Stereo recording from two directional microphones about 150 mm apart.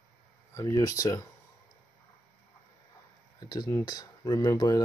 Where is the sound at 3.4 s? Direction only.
25° left (ahead or behind).